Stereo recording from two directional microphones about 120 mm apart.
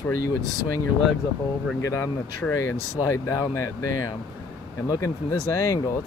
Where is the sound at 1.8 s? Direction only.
20° left (ahead or behind).